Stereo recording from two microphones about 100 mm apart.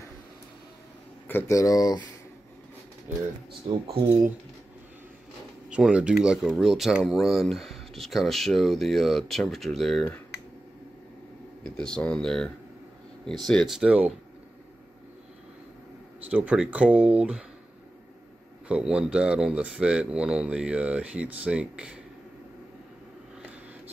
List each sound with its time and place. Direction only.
1.5 s speech: 35° left (ahead or behind)
3.8 s speech: 70° right (ahead or behind)
5.7 s speech: 10° right (ahead or behind)
11.6 s speech: 10° left (ahead or behind)
13.5 s speech: centre (ahead or behind)
16.3 s speech: 15° right (ahead or behind)
18.7 s speech: 10° right (ahead or behind)